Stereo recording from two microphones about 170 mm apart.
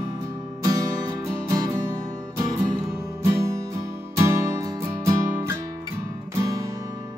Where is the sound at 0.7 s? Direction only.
20° right (ahead or behind).